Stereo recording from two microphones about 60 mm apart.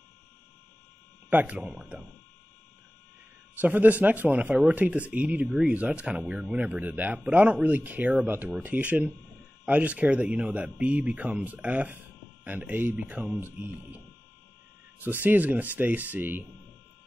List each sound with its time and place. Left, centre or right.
1.3 s speech: right
3.5 s speech: right